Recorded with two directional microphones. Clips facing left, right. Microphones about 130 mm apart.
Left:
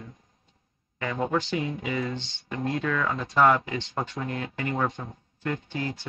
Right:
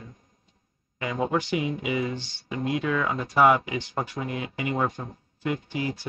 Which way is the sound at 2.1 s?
20° left (ahead or behind).